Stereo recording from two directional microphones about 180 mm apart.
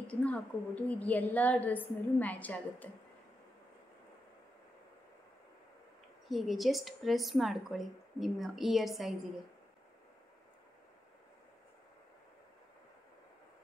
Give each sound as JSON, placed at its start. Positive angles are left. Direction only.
{"t": 0.0, "sound": "a woman's voice", "side_deg": 5}
{"t": 6.2, "sound": "a woman's voice", "side_deg": 0}